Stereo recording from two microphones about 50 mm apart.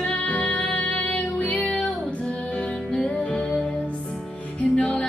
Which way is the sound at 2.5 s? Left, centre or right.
Centre.